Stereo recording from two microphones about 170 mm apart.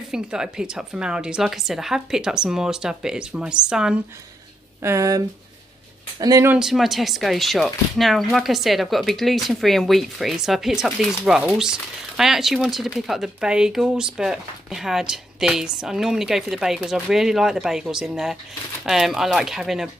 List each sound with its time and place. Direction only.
0.1 s speech: 5° right (ahead or behind)
4.8 s speech: 20° right (ahead or behind)
6.5 s speech: centre (ahead or behind)